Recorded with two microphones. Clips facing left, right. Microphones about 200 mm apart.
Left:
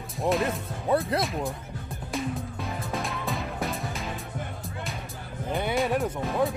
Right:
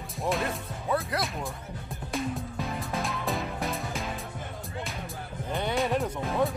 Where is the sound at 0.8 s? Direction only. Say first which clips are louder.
Left 5 dB; 30° left (ahead or behind).